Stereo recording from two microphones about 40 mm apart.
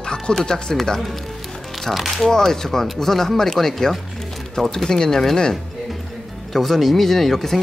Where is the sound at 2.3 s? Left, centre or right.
Centre.